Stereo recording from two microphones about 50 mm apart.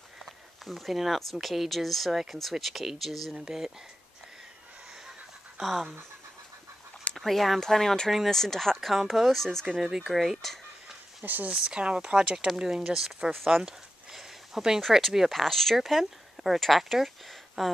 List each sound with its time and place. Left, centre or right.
0.2 s speech: centre
3.3 s speech: centre
5.6 s speech: centre
7.2 s speech: centre
9.8 s speech: centre
11.2 s speech: right
11.5 s speech: centre
13.5 s a sound: centre
14.8 s speech: centre